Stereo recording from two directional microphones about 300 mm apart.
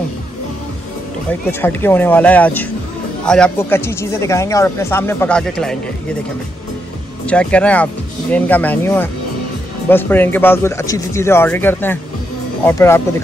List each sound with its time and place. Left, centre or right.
1.5 s speech: centre
7.2 s speech: centre